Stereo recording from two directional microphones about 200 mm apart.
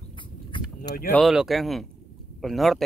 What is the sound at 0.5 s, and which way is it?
Vehicle, 25° left (ahead or behind).